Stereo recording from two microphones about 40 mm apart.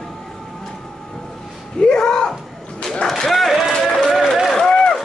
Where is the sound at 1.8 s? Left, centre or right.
Centre.